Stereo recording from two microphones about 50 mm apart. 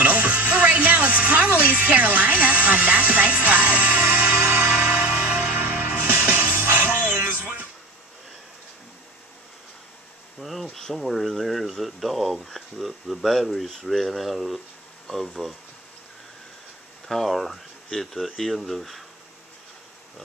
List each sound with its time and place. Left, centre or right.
0.0 s music: right
4.0 s music: right
4.9 s music: right
5.2 s music: right
5.6 s music: right
10.4 s insect: centre
11.0 s a sound: centre
17.1 s a sound: centre
17.8 s speech: centre